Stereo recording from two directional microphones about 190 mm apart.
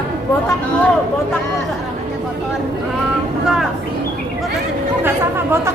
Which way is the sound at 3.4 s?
Centre (ahead or behind).